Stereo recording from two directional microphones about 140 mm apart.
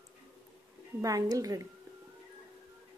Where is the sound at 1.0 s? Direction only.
25° right (ahead or behind).